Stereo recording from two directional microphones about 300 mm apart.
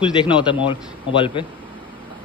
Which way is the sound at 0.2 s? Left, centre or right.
Centre.